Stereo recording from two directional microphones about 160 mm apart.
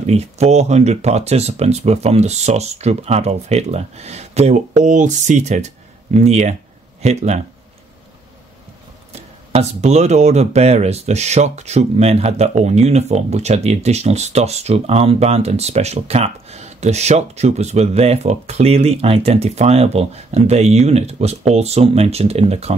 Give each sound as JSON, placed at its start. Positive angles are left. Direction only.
{"t": 0.0, "sound": "speech", "side_deg": -45}
{"t": 9.1, "sound": "speech", "side_deg": -40}